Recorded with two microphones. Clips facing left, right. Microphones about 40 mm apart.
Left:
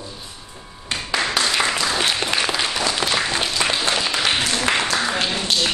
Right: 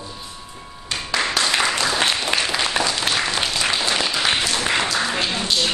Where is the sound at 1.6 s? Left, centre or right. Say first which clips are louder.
Even; centre.